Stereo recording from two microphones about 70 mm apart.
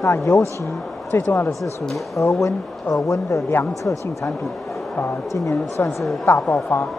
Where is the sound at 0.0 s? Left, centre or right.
Left.